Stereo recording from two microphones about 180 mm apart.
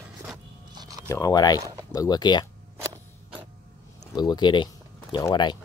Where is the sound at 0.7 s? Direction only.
25° right (ahead or behind).